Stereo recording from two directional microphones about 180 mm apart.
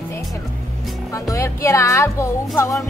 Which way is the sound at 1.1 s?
15° left (ahead or behind).